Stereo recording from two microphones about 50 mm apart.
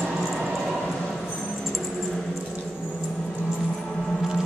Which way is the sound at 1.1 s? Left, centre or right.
Centre.